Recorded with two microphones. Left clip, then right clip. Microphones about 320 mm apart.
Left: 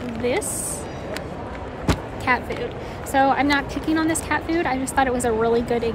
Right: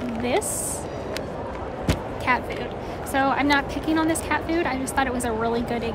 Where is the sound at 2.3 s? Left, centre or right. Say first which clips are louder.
Left 2 dB; centre.